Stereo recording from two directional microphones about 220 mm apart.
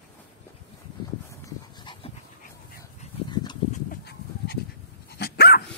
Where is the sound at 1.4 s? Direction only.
20° left (ahead or behind).